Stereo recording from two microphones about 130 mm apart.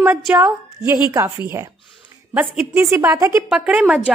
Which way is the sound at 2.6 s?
5° right (ahead or behind).